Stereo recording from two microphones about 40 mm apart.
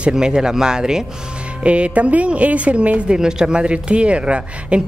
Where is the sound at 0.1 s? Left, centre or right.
Centre.